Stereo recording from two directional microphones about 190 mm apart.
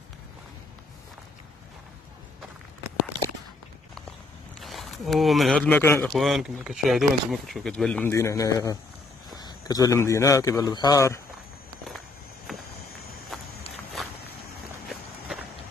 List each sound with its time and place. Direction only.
4.6 s speech: centre (ahead or behind)
6.1 s a man's voice: centre (ahead or behind); by 11.1 s 15° left (ahead or behind)
12.5 s walk: centre (ahead or behind)
13.3 s a sound: centre (ahead or behind)